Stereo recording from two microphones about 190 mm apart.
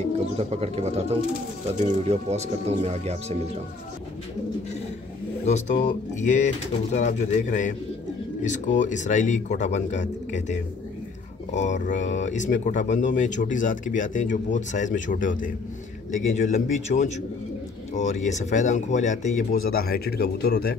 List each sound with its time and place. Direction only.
0.4 s speech: 35° right (ahead or behind)
5.4 s speech: 35° left (ahead or behind); by 20.7 s 55° left (ahead or behind)